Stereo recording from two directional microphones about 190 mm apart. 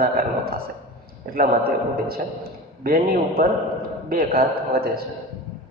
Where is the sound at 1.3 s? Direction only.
50° right (ahead or behind).